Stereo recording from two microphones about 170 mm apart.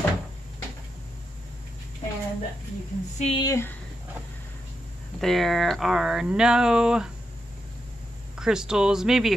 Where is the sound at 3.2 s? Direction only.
35° left (ahead or behind).